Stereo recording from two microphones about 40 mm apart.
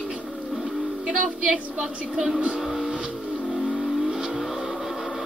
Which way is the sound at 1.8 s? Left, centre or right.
Centre.